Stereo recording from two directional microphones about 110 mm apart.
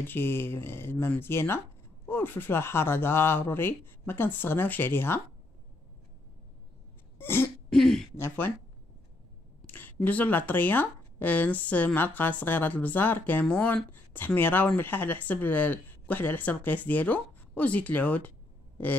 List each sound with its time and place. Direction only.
0.0 s speech: 20° left (ahead or behind)
7.2 s throat clearing: 20° left (ahead or behind)
7.7 s throat clearing: 5° left (ahead or behind)
8.2 s speech: 20° left (ahead or behind)
9.7 s a sound: 15° left (ahead or behind)
9.9 s speech: 15° left (ahead or behind)